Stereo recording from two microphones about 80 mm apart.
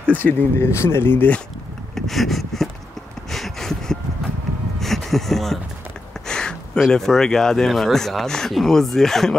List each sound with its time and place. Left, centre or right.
0.0 s speech: centre
0.7 s speech: left
2.0 s speech: centre
3.3 s a sound: centre
6.8 s speech: centre